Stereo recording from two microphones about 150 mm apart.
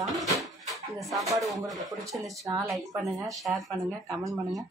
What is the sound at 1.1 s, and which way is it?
Speech, 20° right (ahead or behind).